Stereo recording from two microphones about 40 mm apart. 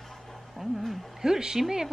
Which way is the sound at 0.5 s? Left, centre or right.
Centre.